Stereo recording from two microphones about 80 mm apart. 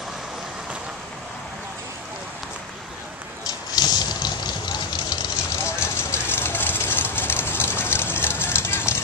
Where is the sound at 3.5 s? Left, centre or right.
Left.